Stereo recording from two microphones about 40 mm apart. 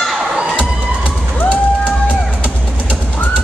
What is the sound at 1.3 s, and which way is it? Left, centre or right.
Music, left.